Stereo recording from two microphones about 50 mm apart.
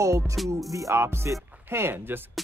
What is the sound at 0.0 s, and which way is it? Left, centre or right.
Music, right.